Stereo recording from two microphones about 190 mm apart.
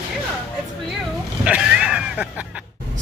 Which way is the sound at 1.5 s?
5° right (ahead or behind).